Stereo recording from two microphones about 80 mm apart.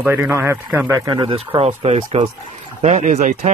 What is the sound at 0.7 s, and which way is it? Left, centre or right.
Speech, right.